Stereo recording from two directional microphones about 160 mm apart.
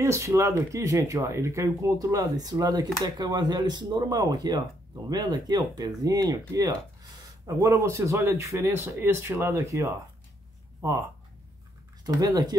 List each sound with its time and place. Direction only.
0.0 s speech: 20° right (ahead or behind)
12.0 s speech: 25° right (ahead or behind)